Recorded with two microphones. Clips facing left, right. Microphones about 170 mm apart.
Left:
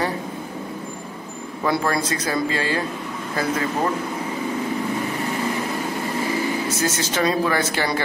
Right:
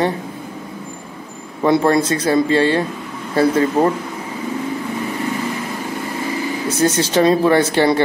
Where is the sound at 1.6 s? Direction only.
25° right (ahead or behind).